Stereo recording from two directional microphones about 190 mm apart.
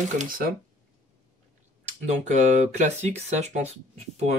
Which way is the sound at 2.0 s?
35° right (ahead or behind).